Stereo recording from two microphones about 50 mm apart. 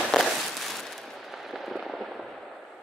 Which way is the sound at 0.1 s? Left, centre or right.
Centre.